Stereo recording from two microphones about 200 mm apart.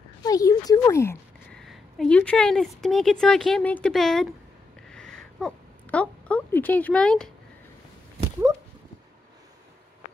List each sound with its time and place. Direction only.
0.2 s speech: 20° left (ahead or behind)
1.5 s a woman's voice: centre (ahead or behind)
4.8 s a sound: 5° left (ahead or behind)